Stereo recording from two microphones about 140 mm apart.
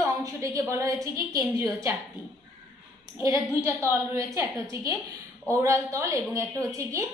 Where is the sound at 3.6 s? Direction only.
20° right (ahead or behind).